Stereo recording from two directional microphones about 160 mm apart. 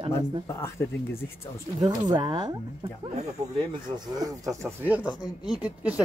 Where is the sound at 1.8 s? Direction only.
25° right (ahead or behind).